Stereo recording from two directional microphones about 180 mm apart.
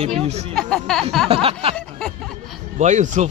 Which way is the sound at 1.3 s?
30° right (ahead or behind).